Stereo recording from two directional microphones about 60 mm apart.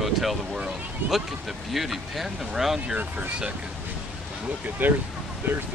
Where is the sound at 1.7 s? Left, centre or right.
Centre.